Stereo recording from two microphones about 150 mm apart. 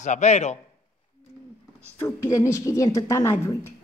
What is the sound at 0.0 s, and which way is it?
Speech, 50° left (ahead or behind).